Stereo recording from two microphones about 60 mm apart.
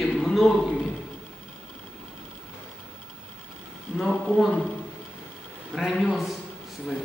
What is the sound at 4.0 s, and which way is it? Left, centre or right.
Speech, centre.